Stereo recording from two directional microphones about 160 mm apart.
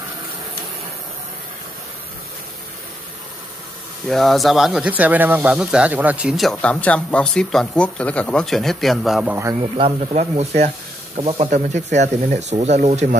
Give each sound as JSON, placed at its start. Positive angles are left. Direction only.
{"t": 4.1, "sound": "speech", "side_deg": 0}
{"t": 9.3, "sound": "a man's voice", "side_deg": -15}
{"t": 9.6, "sound": "speech", "side_deg": -40}